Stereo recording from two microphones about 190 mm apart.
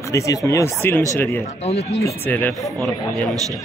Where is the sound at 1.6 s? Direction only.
35° left (ahead or behind).